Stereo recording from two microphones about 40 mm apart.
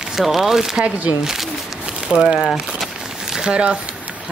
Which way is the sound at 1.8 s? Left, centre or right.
Right.